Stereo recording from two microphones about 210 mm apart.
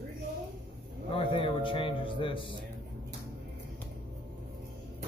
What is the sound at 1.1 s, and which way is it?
A man's voice, 25° left (ahead or behind).